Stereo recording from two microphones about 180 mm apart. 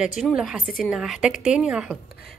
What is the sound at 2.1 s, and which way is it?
Beatboxing, 60° left (ahead or behind).